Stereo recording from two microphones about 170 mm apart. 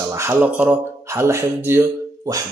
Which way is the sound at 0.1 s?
15° right (ahead or behind).